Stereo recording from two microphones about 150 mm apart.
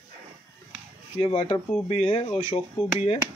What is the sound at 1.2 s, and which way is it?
Speech, 45° left (ahead or behind).